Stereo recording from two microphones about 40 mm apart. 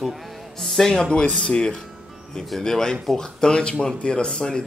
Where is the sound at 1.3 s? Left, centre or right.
Left.